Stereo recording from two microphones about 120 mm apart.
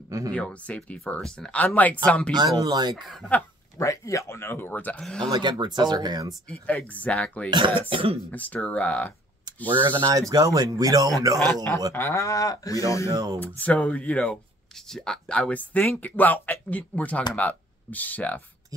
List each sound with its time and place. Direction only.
0.3 s speech: 10° left (ahead or behind)
2.3 s speech: 35° right (ahead or behind)
3.0 s speech: centre (ahead or behind)
3.7 s speech: 25° left (ahead or behind); by 5.3 s 5° left (ahead or behind)
5.3 s speech: 40° right (ahead or behind)
6.5 s speech: 10° left (ahead or behind)
7.5 s speech: 45° right (ahead or behind)
8.3 s speech: 15° left (ahead or behind)
9.7 s speech: 40° right (ahead or behind)
11.3 s speech: 15° left (ahead or behind)
13.1 s speech: 35° right (ahead or behind)
13.4 s speech: 15° left (ahead or behind)